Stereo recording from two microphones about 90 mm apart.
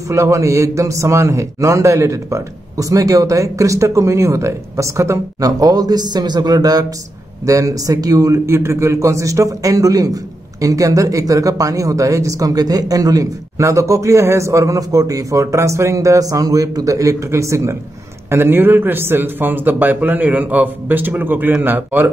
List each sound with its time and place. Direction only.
0.1 s a man's voice: 35° right (ahead or behind)